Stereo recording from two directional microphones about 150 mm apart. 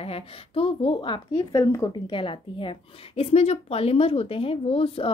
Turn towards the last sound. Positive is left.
turn(degrees=40)  # may be behind; listen again after turning